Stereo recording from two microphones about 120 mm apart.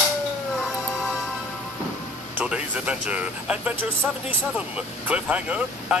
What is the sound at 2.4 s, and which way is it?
Speech, 10° right (ahead or behind).